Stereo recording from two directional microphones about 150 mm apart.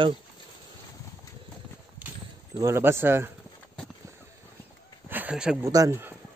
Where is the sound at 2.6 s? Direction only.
15° right (ahead or behind).